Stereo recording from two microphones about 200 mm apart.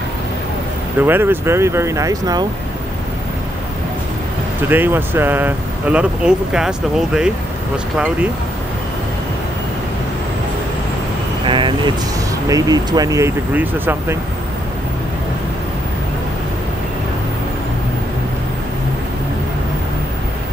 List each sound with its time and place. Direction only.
0.9 s speech: 10° right (ahead or behind)
4.6 s speech: 10° right (ahead or behind)
11.4 s vehicle: 25° right (ahead or behind)
12.4 s speech: 20° right (ahead or behind)